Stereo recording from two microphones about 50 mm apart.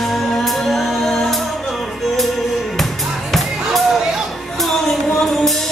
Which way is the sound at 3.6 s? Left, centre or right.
Centre.